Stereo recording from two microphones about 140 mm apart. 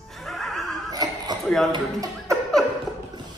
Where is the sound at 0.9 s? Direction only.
25° right (ahead or behind).